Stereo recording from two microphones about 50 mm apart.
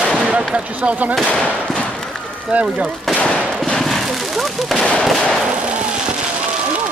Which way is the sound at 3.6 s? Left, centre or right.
Centre.